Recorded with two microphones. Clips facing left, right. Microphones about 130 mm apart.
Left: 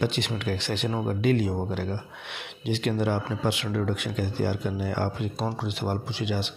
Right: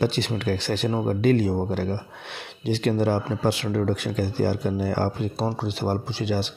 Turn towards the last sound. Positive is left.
turn(degrees=-35)  # may be behind; listen again after turning